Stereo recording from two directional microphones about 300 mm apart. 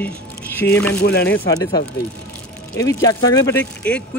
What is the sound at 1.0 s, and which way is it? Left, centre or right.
Speech, left.